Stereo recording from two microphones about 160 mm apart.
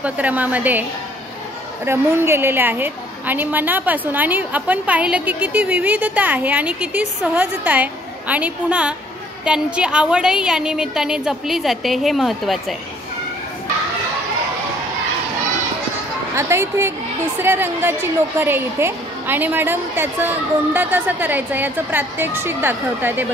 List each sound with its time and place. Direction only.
0.0 s a woman's voice: 10° right (ahead or behind)
1.9 s a woman's voice: 15° right (ahead or behind); by 12.7 s centre (ahead or behind)
16.3 s a woman's voice: 15° right (ahead or behind)